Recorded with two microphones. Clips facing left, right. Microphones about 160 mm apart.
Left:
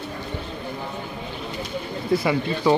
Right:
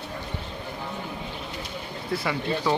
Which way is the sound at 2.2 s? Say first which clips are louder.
Left 4 dB; 15° left (ahead or behind).